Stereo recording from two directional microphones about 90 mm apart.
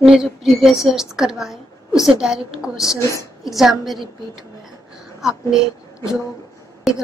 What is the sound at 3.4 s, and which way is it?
Speech, centre (ahead or behind).